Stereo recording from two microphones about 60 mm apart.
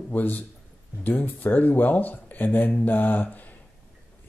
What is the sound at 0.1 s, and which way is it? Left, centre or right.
Speech, left.